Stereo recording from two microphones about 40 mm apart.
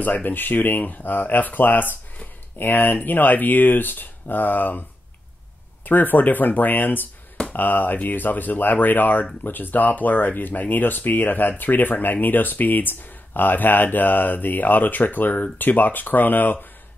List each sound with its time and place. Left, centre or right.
0.0 s speech: left
5.9 s speech: left